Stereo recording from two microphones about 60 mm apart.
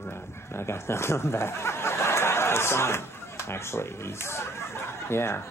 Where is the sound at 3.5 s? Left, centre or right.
Left.